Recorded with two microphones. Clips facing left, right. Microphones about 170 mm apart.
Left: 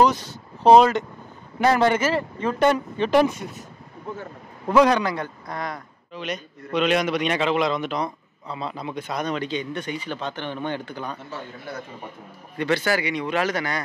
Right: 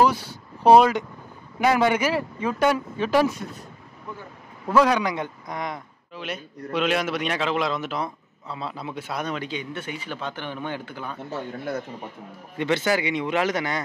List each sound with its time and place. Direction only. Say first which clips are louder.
0.0 s speech: left 1 dB; 10° right (ahead or behind)
4.8 s a man's voice: left 2 dB; 10° right (ahead or behind)
6.1 s a man's voice: left 2 dB; 5° right (ahead or behind)
12.5 s a man's voice: even; 20° right (ahead or behind)